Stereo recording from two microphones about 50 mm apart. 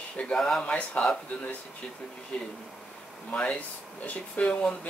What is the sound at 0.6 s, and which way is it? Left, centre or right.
Speech, left.